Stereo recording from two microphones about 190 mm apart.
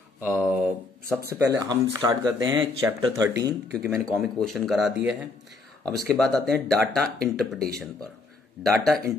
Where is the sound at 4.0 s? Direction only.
Centre (ahead or behind).